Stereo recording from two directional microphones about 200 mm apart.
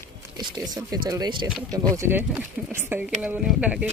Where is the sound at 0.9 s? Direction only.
20° right (ahead or behind).